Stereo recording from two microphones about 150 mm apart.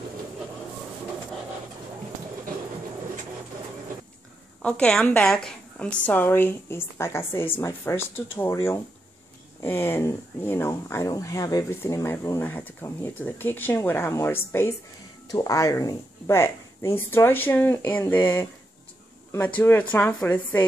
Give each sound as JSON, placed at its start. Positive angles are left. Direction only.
{"t": 4.6, "sound": "speech", "side_deg": 5}